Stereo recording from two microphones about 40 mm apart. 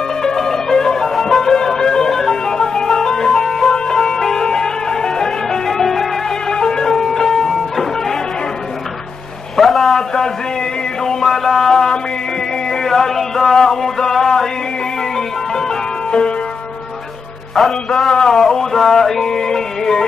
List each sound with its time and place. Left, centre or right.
0.2 s music: centre
6.5 s music: centre
9.6 s a sound: centre
11.1 s music: centre
12.6 s a sound: centre
15.1 s music: centre
17.6 s music: centre